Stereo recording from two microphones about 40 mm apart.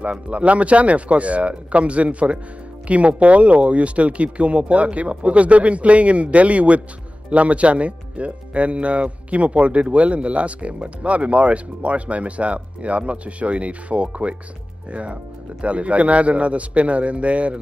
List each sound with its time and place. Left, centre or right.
0.0 s speech: right